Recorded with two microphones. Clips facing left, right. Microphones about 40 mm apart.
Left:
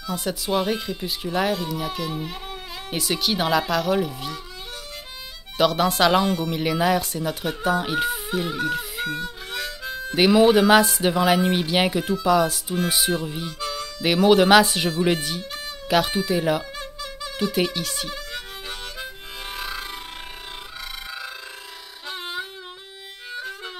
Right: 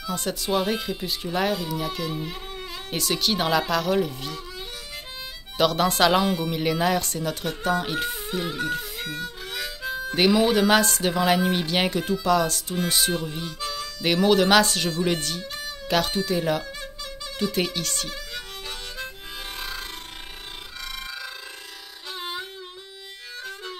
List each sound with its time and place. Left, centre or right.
0.0 s speech: centre
5.6 s speech: centre
19.5 s music: centre
22.2 s harmonica: centre